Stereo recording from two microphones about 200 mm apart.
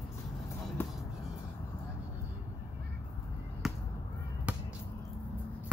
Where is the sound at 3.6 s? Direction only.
Centre (ahead or behind).